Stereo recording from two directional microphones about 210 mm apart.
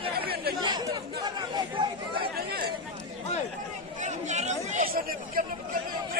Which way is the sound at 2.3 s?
50° right (ahead or behind).